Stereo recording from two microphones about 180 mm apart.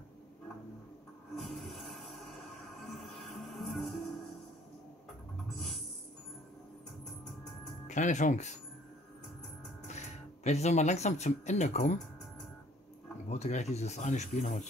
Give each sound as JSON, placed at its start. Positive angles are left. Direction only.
{"t": 1.3, "sound": "music", "side_deg": 0}
{"t": 5.5, "sound": "a sound", "side_deg": 0}
{"t": 7.8, "sound": "speech", "side_deg": 40}
{"t": 9.8, "sound": "speech", "side_deg": 40}
{"t": 13.3, "sound": "speech", "side_deg": 40}